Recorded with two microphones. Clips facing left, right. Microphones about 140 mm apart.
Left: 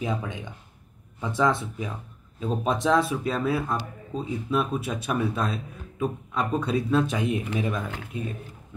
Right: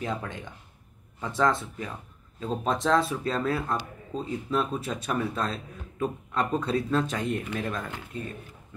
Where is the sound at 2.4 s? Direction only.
10° left (ahead or behind).